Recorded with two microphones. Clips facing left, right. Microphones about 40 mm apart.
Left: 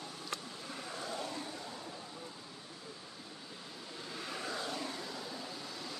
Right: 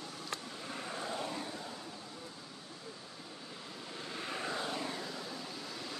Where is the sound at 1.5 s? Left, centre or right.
Centre.